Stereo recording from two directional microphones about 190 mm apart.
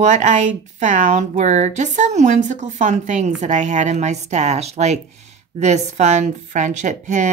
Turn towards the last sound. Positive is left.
turn(degrees=-40)  # may be behind; listen again after turning